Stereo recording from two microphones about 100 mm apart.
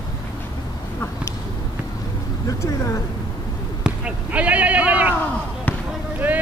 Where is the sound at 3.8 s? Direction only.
10° right (ahead or behind).